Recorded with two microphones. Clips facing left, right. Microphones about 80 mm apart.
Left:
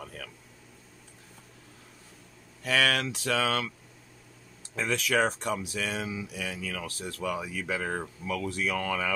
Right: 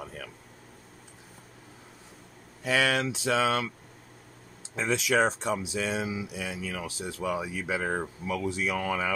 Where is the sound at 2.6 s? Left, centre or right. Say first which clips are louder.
Right 1 dB; centre.